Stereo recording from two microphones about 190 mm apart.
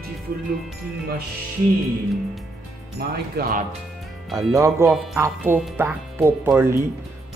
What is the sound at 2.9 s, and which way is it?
Speech, 55° right (ahead or behind).